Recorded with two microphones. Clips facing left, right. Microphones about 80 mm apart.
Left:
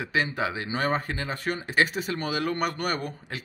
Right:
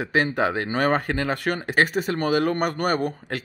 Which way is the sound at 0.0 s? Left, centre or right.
Right.